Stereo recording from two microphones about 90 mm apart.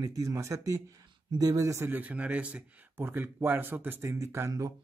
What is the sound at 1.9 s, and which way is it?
Speech, 15° right (ahead or behind).